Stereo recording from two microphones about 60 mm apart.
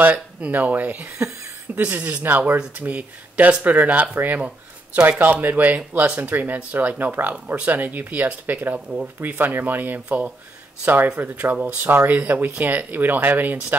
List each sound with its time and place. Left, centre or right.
0.1 s speech: right